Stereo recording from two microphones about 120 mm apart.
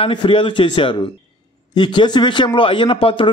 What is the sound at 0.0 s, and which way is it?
A man's voice, 45° left (ahead or behind).